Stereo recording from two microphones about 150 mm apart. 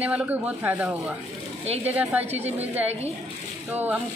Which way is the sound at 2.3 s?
45° right (ahead or behind).